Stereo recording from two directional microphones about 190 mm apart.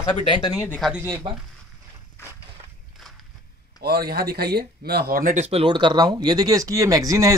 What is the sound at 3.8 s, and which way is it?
Speech, 55° right (ahead or behind).